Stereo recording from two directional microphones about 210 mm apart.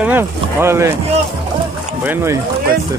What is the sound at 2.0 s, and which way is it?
Speech, 10° right (ahead or behind).